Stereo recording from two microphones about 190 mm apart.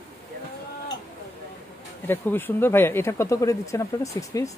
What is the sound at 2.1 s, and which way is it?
Speech, 10° left (ahead or behind).